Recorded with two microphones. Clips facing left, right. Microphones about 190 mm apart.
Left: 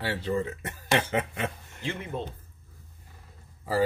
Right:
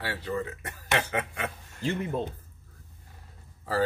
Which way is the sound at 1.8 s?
40° right (ahead or behind).